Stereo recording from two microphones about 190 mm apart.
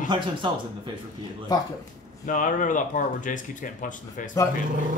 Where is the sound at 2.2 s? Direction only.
45° left (ahead or behind).